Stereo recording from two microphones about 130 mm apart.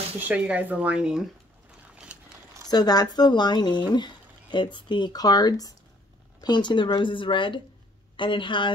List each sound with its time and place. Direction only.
0.3 s speech: 10° right (ahead or behind)
2.7 s speech: 30° left (ahead or behind)